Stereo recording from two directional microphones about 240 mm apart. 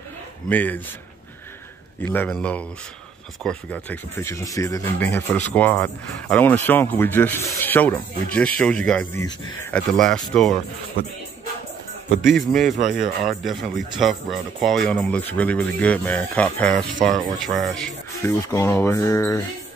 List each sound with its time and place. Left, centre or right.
0.5 s speech: centre
2.1 s speech: centre
12.2 s speech: centre
12.7 s speech: right
13.4 s speech: centre